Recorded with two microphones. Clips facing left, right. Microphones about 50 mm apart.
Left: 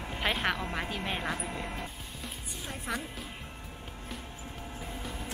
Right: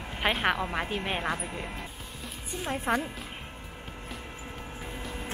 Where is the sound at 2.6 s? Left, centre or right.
Right.